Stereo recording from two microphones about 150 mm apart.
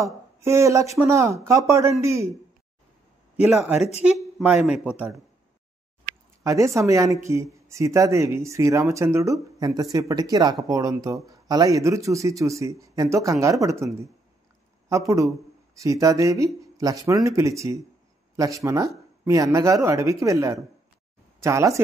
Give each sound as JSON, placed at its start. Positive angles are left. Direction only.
{"t": 0.0, "sound": "speech", "side_deg": -20}
{"t": 3.3, "sound": "speech", "side_deg": -5}
{"t": 6.4, "sound": "speech", "side_deg": -20}
{"t": 14.9, "sound": "speech", "side_deg": -20}